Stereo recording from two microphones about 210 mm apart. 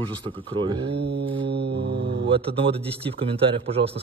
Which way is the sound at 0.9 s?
50° right (ahead or behind).